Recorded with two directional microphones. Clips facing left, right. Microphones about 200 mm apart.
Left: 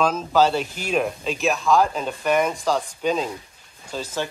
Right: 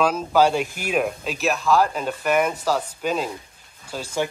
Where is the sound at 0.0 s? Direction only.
10° right (ahead or behind).